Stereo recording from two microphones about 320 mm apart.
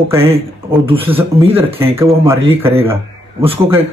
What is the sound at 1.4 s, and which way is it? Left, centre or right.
A man's voice, centre.